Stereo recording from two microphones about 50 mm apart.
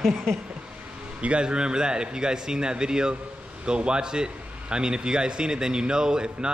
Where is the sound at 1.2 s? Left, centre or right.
Right.